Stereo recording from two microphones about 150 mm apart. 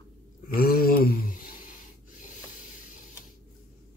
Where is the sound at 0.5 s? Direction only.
80° left.